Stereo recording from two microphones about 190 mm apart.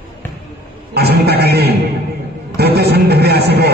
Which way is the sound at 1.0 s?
55° right (ahead or behind).